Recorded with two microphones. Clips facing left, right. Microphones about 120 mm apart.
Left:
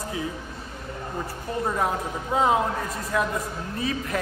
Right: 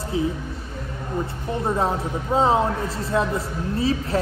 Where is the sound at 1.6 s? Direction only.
25° right (ahead or behind).